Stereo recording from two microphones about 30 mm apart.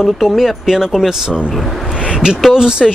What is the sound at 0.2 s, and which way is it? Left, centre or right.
Speech, centre.